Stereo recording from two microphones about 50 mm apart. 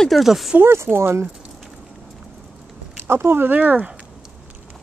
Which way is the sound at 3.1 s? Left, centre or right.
Right.